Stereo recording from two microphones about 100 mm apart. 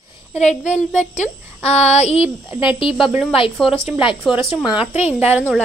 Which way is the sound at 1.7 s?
90° left.